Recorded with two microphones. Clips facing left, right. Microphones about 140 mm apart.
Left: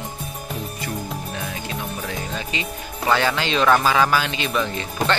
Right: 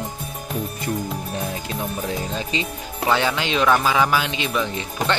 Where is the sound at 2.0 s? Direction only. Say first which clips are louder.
Right 3 dB; 30° right (ahead or behind).